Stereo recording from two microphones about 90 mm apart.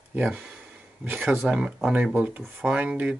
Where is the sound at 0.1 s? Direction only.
20° right (ahead or behind).